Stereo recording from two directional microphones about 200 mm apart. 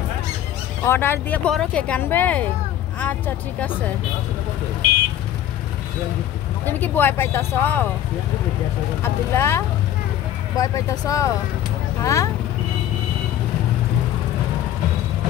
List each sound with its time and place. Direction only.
0.8 s speech: 10° left (ahead or behind)
6.6 s speech: 10° left (ahead or behind)
9.0 s speech: 10° left (ahead or behind)